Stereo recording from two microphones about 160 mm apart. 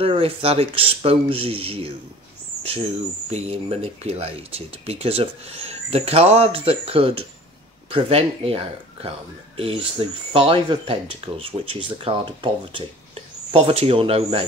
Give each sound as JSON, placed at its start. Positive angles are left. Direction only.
{"t": 0.0, "sound": "speech", "side_deg": -35}
{"t": 3.3, "sound": "speech", "side_deg": -40}